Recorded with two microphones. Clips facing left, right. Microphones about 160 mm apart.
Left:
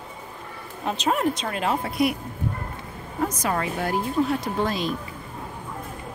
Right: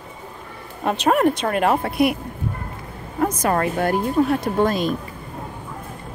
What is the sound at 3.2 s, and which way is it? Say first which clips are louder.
Speech: right 5 dB; 55° right (ahead or behind).